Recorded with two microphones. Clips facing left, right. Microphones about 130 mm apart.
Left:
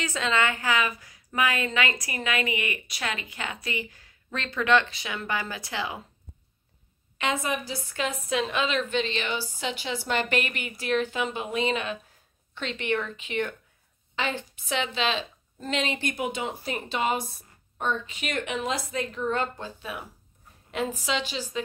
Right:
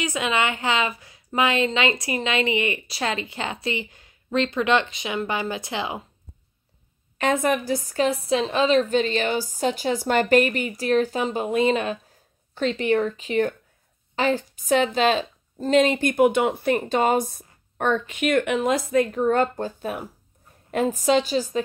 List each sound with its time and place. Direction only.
0.0 s a woman's voice: 15° right (ahead or behind)
7.2 s a woman's voice: 50° right (ahead or behind)